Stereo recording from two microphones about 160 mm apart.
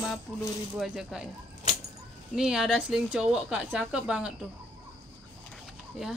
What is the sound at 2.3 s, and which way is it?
A woman's voice, 5° right (ahead or behind).